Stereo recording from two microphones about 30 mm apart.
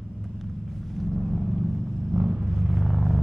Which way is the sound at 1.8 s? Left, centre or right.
Centre.